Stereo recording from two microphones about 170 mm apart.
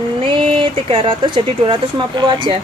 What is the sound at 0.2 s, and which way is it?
Speech, 30° right (ahead or behind).